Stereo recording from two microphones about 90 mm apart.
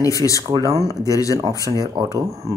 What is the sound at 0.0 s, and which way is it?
Speech, 40° left (ahead or behind).